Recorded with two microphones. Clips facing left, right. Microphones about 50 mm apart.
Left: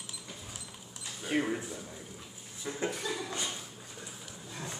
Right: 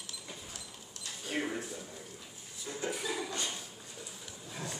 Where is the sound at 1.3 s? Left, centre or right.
Centre.